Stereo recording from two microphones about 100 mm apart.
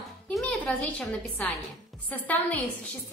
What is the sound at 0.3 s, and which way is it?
A woman's voice, centre (ahead or behind).